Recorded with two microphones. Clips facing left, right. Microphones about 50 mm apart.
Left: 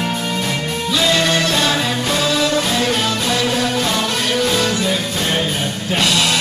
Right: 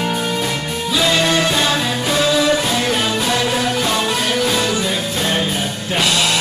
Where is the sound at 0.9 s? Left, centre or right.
Centre.